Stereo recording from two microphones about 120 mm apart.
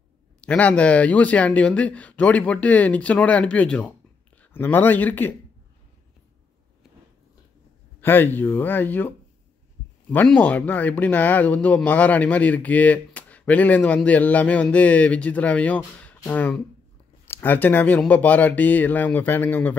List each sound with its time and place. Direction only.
0.5 s speech: 10° left (ahead or behind)
8.0 s speech: 15° left (ahead or behind)